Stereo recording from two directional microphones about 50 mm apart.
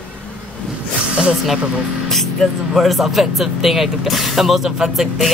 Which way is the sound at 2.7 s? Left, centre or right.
Centre.